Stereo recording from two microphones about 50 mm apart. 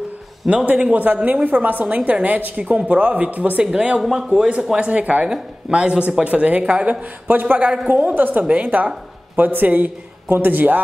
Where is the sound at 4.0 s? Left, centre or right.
Centre.